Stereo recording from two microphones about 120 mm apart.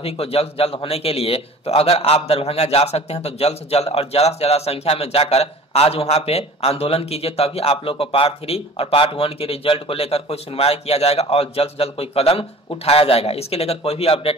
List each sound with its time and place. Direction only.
0.0 s a man's voice: 55° left (ahead or behind)